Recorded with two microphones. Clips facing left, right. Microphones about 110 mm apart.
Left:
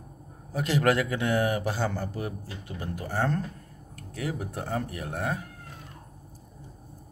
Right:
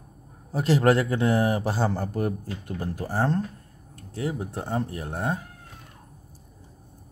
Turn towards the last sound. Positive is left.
turn(degrees=-30)  # may be behind; listen again after turning